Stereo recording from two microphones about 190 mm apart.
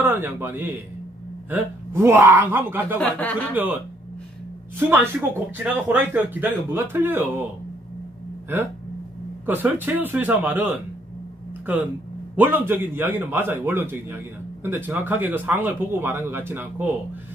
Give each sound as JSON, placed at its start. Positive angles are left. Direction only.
{"t": 0.0, "sound": "a man's voice", "side_deg": -10}
{"t": 3.0, "sound": "speech", "side_deg": 10}
{"t": 3.5, "sound": "a man's voice", "side_deg": -10}
{"t": 9.5, "sound": "a man's voice", "side_deg": -10}